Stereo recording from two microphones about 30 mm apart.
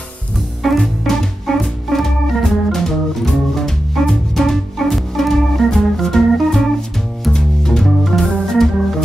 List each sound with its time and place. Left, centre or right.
0.6 s music: centre
1.5 s organ: centre
7.3 s music: centre
7.8 s organ: centre